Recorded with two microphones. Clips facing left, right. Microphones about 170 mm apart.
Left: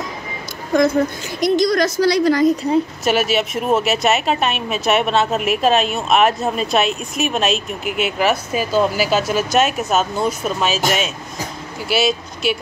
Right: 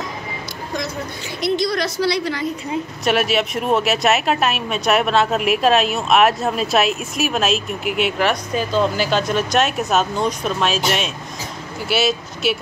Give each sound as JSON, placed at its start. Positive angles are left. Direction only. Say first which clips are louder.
{"t": 1.4, "sound": "a woman's voice", "louder": "left 5 dB", "side_deg": 45}
{"t": 3.1, "sound": "a woman's voice", "louder": "right 2 dB", "side_deg": 0}
{"t": 11.9, "sound": "a woman's voice", "louder": "left 1 dB", "side_deg": 0}